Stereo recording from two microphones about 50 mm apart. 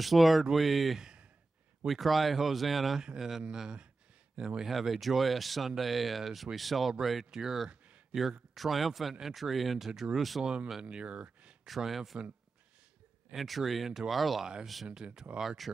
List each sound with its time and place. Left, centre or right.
0.0 s speech: centre
3.0 s speech: centre
10.4 s speech: centre
11.6 s speech: centre
13.3 s speech: centre
14.4 s speech: centre